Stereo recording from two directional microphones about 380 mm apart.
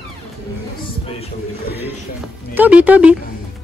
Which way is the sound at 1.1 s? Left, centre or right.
Left.